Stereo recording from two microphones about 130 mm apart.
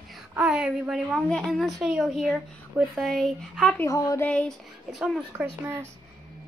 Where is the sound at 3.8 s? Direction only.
25° left (ahead or behind).